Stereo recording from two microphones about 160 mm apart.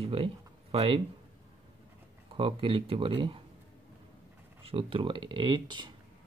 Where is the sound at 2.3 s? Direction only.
35° right (ahead or behind).